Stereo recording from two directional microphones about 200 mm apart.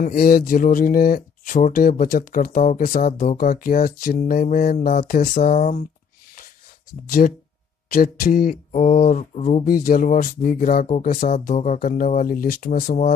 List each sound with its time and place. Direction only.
0.0 s speech: 45° left (ahead or behind)
7.1 s speech: 45° left (ahead or behind)